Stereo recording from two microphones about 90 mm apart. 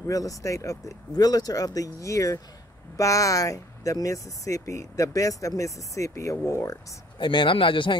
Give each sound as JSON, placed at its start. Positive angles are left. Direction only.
{"t": 0.0, "sound": "speech", "side_deg": 40}
{"t": 7.2, "sound": "speech", "side_deg": 65}